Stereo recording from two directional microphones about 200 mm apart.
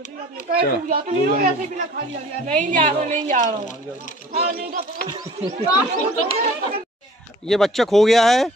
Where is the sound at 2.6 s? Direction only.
40° right (ahead or behind).